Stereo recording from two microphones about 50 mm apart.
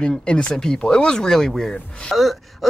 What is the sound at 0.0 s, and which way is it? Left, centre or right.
Speech, centre.